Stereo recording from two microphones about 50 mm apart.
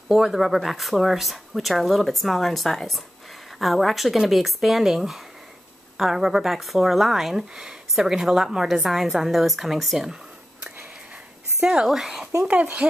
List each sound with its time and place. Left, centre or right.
0.1 s speech: centre
11.6 s a woman's voice: centre
12.4 s speech: right